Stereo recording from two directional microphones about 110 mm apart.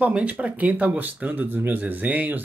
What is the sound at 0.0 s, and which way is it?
Speech, 15° right (ahead or behind).